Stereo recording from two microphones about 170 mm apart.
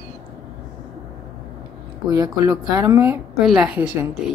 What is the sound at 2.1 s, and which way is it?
Speech, 20° right (ahead or behind).